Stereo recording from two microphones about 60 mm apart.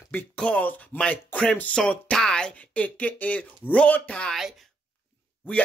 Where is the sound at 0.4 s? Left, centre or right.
Left.